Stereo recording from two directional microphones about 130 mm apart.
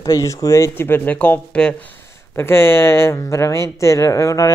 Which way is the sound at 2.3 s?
20° left (ahead or behind).